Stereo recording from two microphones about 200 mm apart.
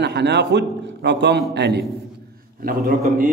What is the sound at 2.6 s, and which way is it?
Speech, 45° right (ahead or behind).